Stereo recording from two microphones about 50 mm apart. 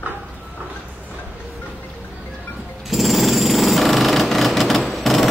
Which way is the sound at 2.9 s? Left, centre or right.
Centre.